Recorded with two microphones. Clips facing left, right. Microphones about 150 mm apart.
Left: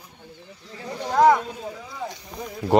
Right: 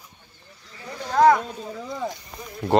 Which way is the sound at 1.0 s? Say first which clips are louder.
Even; 5° left (ahead or behind).